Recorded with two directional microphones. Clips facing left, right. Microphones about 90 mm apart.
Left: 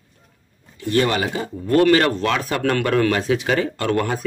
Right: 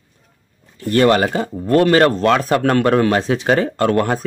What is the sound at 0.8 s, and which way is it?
Speech, 45° right (ahead or behind).